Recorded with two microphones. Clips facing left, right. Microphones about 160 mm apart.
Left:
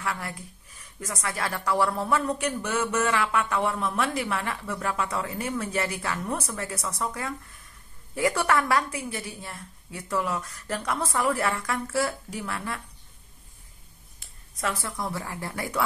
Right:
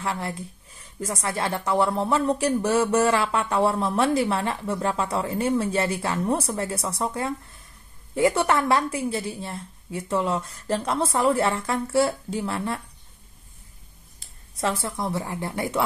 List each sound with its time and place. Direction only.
0.0 s speech: 30° right (ahead or behind)
14.2 s speech: 30° right (ahead or behind)